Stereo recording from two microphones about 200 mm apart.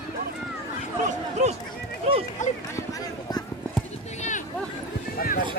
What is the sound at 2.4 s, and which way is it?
Speech, 35° left (ahead or behind).